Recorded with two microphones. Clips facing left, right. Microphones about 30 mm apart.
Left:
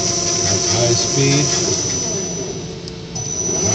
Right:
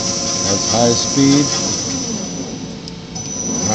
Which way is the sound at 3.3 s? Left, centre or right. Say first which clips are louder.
Even; right.